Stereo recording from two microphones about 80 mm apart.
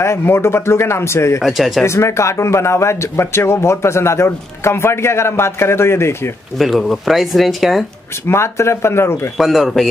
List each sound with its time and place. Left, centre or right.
0.0 s speech: left
1.4 s speech: centre
1.9 s speech: left
6.6 s speech: centre
8.3 s speech: left
9.4 s speech: centre